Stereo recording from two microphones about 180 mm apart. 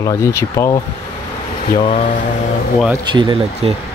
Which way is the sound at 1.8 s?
30° left (ahead or behind).